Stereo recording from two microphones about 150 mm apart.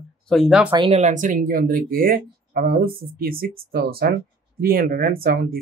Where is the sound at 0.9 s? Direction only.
55° right (ahead or behind).